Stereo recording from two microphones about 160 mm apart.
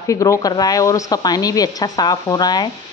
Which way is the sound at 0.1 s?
20° left (ahead or behind).